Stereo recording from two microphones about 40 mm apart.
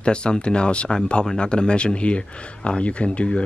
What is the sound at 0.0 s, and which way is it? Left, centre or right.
Speech, left.